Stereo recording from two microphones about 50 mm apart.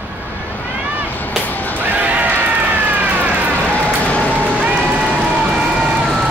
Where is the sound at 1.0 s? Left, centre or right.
Left.